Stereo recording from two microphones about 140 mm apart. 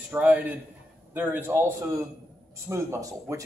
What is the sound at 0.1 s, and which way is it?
Speech, 10° right (ahead or behind).